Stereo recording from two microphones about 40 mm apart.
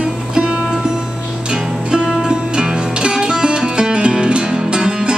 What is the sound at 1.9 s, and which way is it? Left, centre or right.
Music, centre.